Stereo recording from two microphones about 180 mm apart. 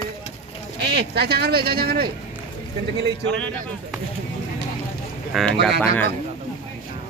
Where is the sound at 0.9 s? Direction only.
65° right (ahead or behind).